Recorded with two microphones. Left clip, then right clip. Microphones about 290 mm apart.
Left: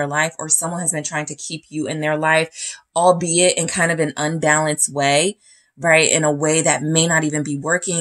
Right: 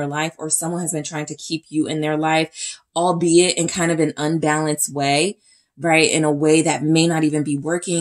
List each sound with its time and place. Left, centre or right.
0.0 s speech: left